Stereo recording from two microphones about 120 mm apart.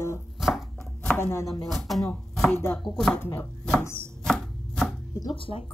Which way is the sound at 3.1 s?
20° left (ahead or behind).